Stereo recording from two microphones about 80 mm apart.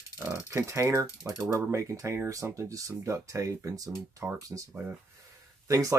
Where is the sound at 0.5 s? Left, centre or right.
Right.